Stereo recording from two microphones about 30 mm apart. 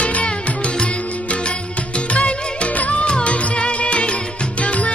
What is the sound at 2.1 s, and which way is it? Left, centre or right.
Music, left.